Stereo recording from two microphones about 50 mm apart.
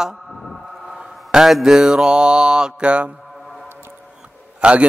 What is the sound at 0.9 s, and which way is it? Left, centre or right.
Mantra, centre.